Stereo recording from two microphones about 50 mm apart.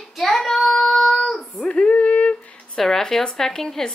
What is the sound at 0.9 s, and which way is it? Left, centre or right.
Child singing, centre.